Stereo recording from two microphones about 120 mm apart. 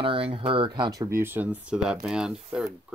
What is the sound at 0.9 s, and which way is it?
Speech, 25° right (ahead or behind).